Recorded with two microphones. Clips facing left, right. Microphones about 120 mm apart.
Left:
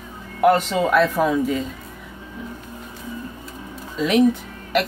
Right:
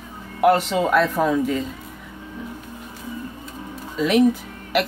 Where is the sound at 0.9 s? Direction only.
Centre (ahead or behind).